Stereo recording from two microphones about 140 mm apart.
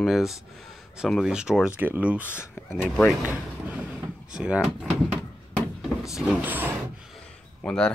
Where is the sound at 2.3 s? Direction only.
15° left (ahead or behind).